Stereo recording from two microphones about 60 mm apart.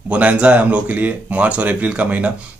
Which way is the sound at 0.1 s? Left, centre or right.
Right.